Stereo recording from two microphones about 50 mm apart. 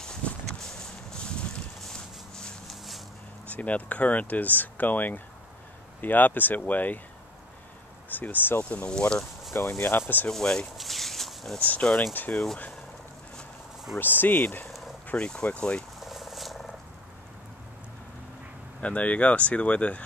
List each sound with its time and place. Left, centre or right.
0.5 s a sound: centre
1.8 s clip-clop: centre
3.5 s speech: left
8.1 s speech: left
8.6 s speech: left
9.7 s speech: left
10.3 s speech: centre
10.8 s a sound: centre
11.5 s speech: left
13.9 s speech: left
15.1 s speech: centre
16.0 s a sound: centre
18.8 s speech: left